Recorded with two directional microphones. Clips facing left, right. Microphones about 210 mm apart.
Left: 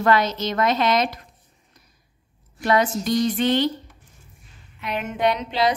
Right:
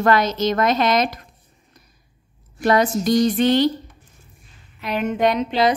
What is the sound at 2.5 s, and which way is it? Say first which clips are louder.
A woman's voice: right 3 dB; 40° right (ahead or behind).